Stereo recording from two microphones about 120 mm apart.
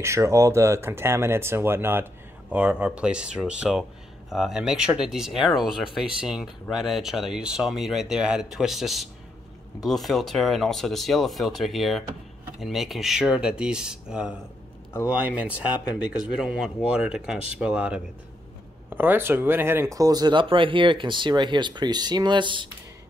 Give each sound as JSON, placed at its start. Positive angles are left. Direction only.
{"t": 0.0, "sound": "speech", "side_deg": -25}